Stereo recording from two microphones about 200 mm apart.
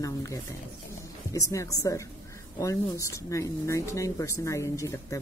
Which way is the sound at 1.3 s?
15° left (ahead or behind).